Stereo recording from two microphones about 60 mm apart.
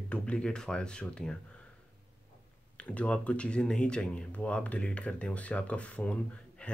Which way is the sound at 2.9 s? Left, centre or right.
Left.